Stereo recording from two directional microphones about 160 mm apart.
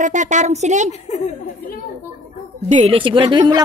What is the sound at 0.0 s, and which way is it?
Speech, 50° right (ahead or behind).